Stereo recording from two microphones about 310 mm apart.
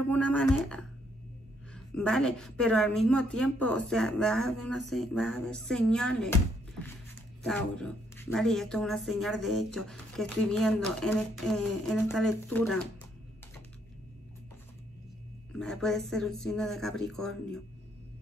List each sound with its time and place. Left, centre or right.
0.1 s speech: centre
2.0 s speech: centre
7.4 s speech: centre
15.6 s speech: centre